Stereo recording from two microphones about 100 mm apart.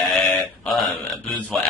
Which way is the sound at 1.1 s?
15° left (ahead or behind).